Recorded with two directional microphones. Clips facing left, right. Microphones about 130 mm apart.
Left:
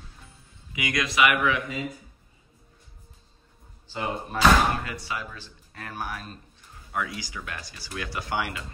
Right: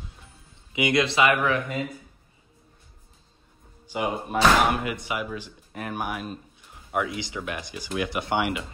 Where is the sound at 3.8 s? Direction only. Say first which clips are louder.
Right 3 dB; 15° right (ahead or behind).